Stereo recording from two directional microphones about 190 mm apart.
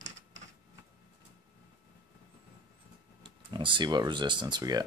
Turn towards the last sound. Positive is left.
turn(degrees=-20)  # may be behind; listen again after turning